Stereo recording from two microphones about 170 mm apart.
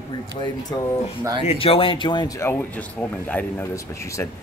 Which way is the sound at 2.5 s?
10° left (ahead or behind).